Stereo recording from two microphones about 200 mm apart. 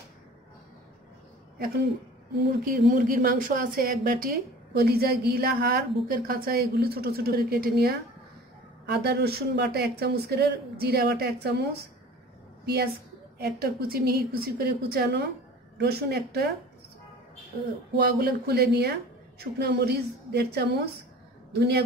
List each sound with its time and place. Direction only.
2.6 s a woman's voice: 45° right (ahead or behind)
18.2 s a man's voice: 55° right (ahead or behind)